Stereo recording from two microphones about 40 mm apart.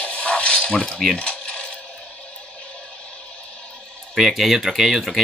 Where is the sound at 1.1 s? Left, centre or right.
Left.